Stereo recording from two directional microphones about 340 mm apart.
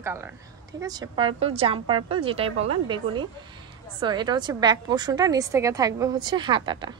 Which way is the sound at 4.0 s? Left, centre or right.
Centre.